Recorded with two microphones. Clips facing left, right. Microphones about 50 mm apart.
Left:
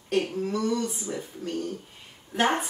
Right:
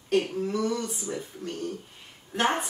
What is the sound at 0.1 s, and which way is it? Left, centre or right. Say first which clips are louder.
Speech: right 1 dB; centre.